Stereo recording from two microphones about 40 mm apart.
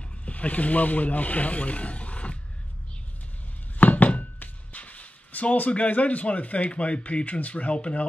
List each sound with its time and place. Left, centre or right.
0.2 s speech: left
3.7 s a sound: left
4.7 s speech: left